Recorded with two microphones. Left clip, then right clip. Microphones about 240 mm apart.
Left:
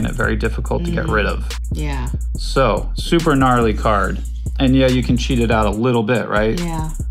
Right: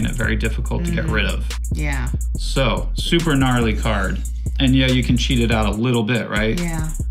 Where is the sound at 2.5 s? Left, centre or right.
Centre.